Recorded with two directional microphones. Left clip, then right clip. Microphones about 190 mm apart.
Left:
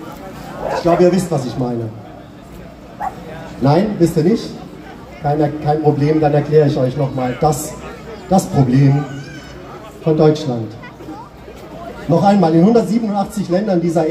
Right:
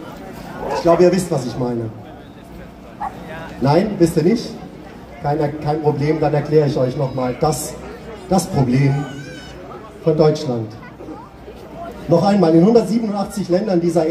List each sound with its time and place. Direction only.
0.8 s a man's voice: 20° right (ahead or behind)
3.6 s a man's voice: 20° right (ahead or behind)
10.1 s speech: 15° right (ahead or behind)
12.1 s speech: 15° right (ahead or behind)